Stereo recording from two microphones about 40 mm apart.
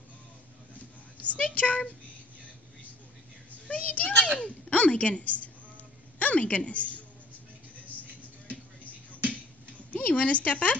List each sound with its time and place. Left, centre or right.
1.2 s a child's voice: left
3.6 s a child's voice: left
9.8 s speech: left